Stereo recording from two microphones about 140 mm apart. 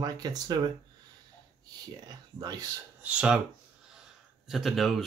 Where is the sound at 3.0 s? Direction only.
10° right (ahead or behind).